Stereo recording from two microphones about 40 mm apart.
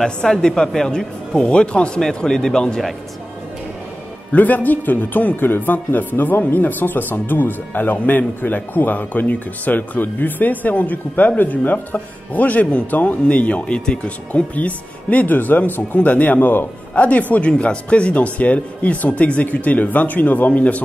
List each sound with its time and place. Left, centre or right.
0.0 s speech: centre
2.0 s speech: centre
4.3 s speech: left
6.4 s speech: left
13.7 s speech: left
14.3 s speech: left
17.5 s speech: left